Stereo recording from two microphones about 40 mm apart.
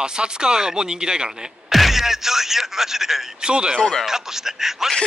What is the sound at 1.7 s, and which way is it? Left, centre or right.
Speech, centre.